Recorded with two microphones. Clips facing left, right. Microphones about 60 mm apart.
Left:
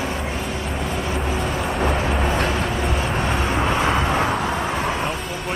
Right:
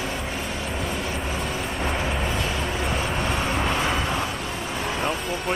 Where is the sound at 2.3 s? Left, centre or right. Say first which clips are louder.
Left 5 dB; left.